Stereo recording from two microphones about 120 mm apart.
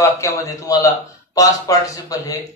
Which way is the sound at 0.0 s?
25° left (ahead or behind).